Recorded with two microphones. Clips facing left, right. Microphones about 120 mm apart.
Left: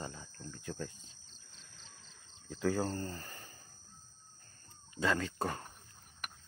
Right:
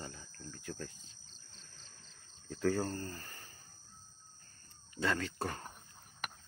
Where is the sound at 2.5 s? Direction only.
20° left (ahead or behind).